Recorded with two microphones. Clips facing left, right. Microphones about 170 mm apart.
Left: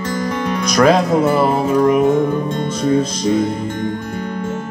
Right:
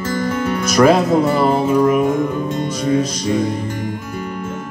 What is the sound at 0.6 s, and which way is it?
Music, 5° right (ahead or behind).